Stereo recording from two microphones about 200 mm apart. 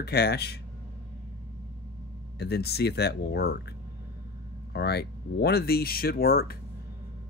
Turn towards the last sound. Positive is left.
turn(degrees=50)  # may be behind; listen again after turning